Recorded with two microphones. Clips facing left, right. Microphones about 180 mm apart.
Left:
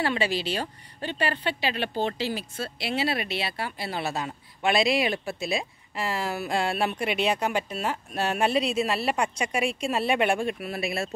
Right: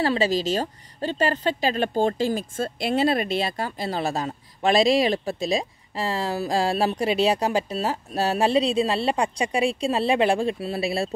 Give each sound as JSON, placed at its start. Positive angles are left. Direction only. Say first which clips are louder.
{"t": 0.0, "sound": "speech", "louder": "right 5 dB", "side_deg": -35}